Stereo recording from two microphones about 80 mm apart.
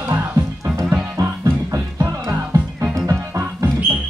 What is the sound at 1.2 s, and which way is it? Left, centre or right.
Music, right.